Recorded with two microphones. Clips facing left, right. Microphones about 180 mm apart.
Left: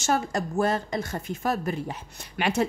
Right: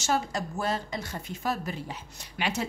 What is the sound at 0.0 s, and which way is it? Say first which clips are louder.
A woman's voice: left 3 dB; 50° left (ahead or behind).